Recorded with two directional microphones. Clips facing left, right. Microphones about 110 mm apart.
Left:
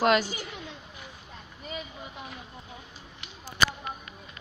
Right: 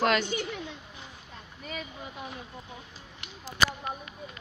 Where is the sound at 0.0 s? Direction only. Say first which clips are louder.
Left 2 dB; 10° left (ahead or behind).